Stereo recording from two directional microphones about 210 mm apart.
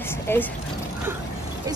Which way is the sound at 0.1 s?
10° left (ahead or behind).